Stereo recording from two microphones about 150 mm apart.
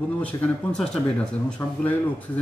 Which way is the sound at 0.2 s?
10° left (ahead or behind).